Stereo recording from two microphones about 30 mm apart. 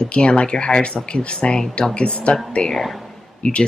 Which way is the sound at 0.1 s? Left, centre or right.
Left.